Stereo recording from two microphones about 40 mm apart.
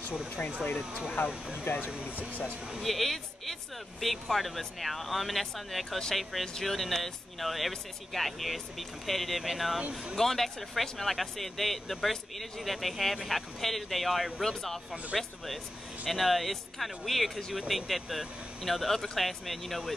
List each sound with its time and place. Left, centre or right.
0.4 s speech: left
1.6 s speech: left
2.0 s speech: left
2.8 s speech: centre
9.8 s speech: right
10.1 s speech: centre